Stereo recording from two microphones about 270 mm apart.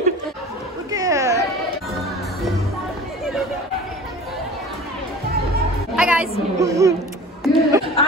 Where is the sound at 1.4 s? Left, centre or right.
Centre.